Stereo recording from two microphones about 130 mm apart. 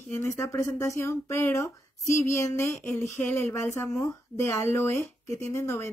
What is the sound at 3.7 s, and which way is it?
Speech, 20° left (ahead or behind).